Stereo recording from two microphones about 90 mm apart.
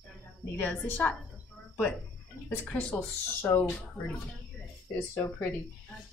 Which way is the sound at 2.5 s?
20° left (ahead or behind).